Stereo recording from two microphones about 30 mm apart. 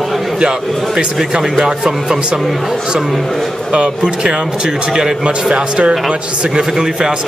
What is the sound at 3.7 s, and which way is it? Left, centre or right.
A man's voice, right.